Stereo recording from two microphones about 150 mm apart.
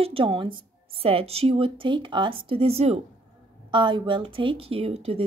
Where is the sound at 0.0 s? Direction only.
35° right (ahead or behind).